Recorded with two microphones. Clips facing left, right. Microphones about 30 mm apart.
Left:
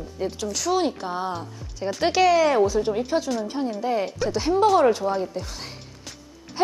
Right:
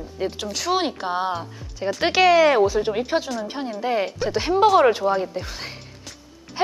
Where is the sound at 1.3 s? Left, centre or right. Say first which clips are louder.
Right 3 dB; centre.